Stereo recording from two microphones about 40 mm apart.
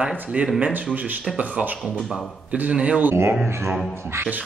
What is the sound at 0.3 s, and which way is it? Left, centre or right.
Speech, right.